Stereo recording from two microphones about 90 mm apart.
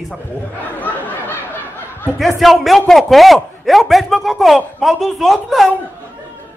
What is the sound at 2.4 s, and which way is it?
Speech, centre (ahead or behind).